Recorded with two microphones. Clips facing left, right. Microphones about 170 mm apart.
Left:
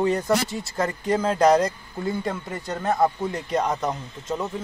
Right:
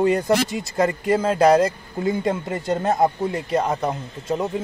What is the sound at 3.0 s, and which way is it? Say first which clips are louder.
Speech: right 2 dB; 5° right (ahead or behind).